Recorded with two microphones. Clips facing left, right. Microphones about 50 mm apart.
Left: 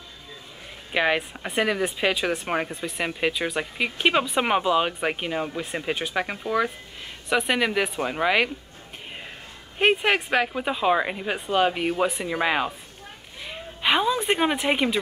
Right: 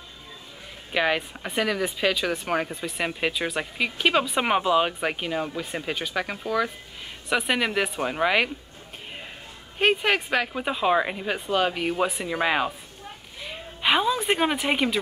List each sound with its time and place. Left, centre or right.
0.9 s speech: centre
9.8 s speech: centre